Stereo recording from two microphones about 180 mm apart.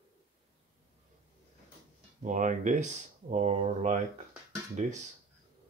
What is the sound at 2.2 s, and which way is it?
Speech, 45° right (ahead or behind).